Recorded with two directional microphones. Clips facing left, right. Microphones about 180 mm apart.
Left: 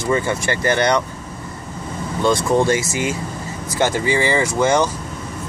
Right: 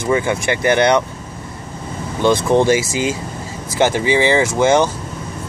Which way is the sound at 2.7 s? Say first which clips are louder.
Right 3 dB; 90° right.